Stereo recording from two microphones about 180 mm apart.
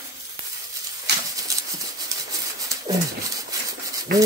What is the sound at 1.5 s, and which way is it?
Horse, 20° right (ahead or behind).